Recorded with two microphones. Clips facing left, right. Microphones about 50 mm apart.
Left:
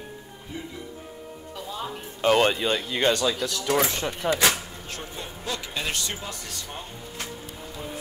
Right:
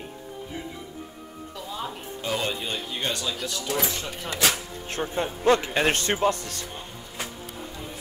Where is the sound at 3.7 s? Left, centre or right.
Left.